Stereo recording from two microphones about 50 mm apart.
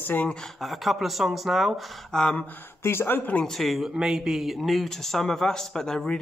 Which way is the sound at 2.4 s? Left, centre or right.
Left.